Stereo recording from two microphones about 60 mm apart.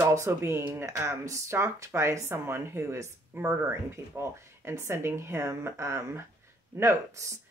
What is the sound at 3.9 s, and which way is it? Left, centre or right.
Speech, right.